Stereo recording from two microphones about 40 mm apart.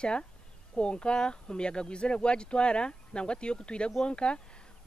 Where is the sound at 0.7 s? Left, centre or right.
Left.